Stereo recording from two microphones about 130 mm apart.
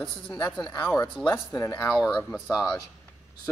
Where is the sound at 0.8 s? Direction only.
25° left (ahead or behind).